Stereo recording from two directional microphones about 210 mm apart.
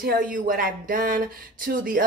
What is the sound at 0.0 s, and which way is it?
A woman's voice, 40° right (ahead or behind).